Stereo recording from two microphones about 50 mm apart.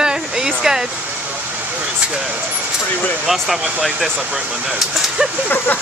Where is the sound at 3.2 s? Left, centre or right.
Centre.